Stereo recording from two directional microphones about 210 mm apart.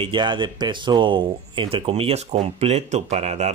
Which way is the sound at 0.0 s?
20° right (ahead or behind).